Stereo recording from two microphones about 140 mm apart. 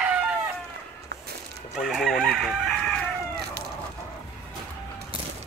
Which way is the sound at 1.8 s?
Centre (ahead or behind).